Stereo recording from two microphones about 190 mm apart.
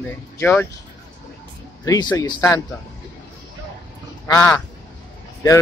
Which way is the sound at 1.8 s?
20° left (ahead or behind).